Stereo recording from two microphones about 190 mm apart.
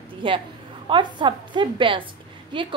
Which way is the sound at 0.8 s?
25° right (ahead or behind).